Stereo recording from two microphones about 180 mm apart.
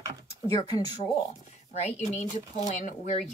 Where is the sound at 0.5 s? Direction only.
20° left (ahead or behind).